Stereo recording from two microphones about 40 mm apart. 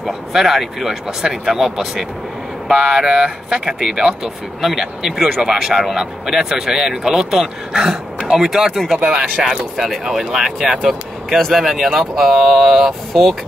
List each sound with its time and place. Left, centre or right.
0.3 s speech: centre
3.1 s speech: right; by 9.0 s centre
9.4 s speech: centre
10.0 s speech: centre